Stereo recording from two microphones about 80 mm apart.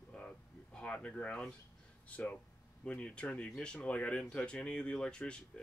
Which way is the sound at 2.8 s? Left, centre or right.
Centre.